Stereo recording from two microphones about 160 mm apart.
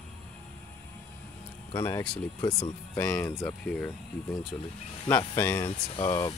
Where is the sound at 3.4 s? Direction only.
5° left (ahead or behind).